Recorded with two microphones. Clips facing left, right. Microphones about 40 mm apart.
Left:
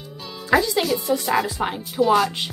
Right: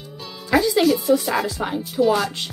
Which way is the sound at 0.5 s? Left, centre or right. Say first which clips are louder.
Right 2 dB; centre.